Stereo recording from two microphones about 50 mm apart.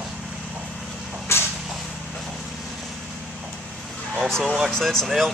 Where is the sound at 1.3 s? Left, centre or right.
Left.